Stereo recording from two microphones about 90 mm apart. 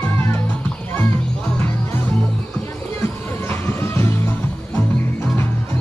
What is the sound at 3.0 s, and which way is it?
Music, 25° left (ahead or behind).